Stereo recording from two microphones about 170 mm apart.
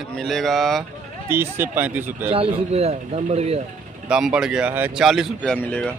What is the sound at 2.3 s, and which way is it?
Speech, 35° right (ahead or behind).